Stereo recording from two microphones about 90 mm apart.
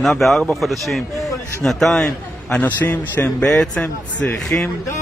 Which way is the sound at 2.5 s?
20° left (ahead or behind).